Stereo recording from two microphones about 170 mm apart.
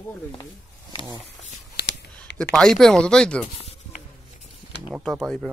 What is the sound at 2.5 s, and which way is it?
Speech, 5° left (ahead or behind).